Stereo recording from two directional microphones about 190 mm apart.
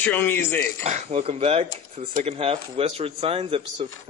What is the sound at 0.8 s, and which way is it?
A man's voice, 35° right (ahead or behind).